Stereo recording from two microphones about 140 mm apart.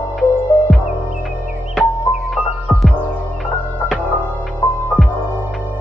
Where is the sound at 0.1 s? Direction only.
Centre (ahead or behind).